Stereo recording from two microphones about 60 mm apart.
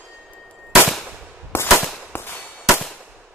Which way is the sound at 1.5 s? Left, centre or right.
Left.